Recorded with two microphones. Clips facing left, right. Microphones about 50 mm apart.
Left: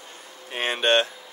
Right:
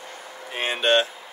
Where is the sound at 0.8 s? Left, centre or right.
Centre.